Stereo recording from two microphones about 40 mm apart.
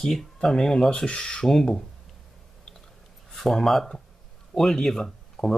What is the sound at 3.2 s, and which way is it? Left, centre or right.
Speech, centre.